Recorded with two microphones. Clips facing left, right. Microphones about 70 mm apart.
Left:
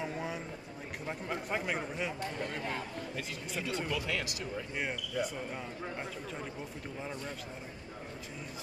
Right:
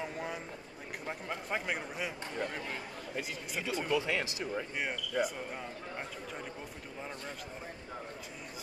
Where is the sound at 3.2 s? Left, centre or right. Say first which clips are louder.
Right 3 dB; centre.